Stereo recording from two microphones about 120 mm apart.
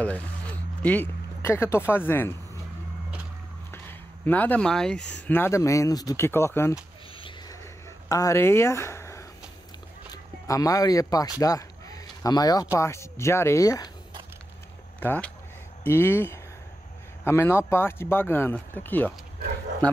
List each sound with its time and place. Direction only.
0.8 s speech: 15° left (ahead or behind)
3.7 s speech: 15° left (ahead or behind)
8.1 s speech: 25° left (ahead or behind)
15.0 s speech: 15° left (ahead or behind)